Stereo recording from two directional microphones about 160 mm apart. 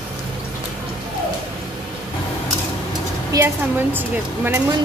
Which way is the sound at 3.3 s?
20° right (ahead or behind).